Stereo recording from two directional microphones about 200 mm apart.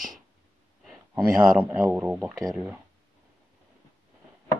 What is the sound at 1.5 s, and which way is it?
Speech, 10° right (ahead or behind).